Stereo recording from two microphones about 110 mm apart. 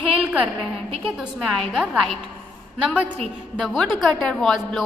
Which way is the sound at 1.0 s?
Centre (ahead or behind).